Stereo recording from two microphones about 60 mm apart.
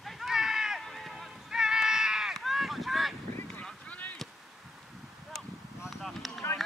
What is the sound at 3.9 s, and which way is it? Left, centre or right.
Boat, left.